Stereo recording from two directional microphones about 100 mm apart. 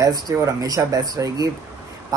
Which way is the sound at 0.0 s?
35° right (ahead or behind).